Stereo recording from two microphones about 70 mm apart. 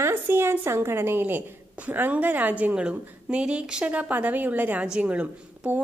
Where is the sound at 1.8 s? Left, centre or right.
Centre.